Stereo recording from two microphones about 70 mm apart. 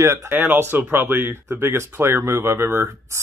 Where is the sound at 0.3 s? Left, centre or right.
Right.